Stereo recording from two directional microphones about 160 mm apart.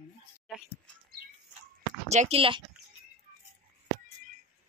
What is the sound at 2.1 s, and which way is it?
Speech, 40° right (ahead or behind).